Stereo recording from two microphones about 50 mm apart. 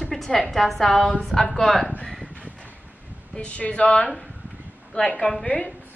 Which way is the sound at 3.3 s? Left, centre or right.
Left.